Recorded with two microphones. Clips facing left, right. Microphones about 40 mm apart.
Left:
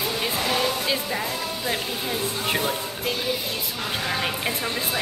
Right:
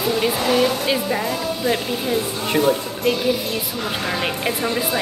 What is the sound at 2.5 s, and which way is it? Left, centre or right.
Speech, centre.